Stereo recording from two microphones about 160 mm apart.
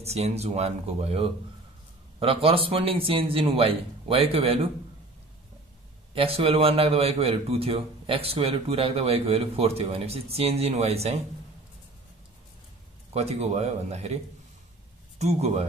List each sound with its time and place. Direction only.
0.0 s a man's voice: 40° right (ahead or behind)
6.1 s a man's voice: 35° right (ahead or behind)
13.1 s a man's voice: 40° right (ahead or behind)